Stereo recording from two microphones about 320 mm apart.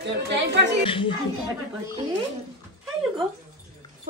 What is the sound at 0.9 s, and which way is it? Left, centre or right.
Speech, centre.